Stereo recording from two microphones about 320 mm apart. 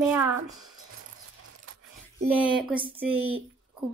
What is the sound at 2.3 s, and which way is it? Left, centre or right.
Speech, centre.